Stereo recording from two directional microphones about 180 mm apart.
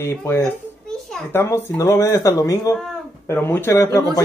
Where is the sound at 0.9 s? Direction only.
5° left (ahead or behind).